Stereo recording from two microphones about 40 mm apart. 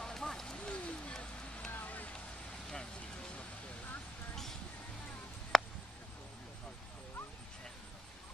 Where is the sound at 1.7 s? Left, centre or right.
Left.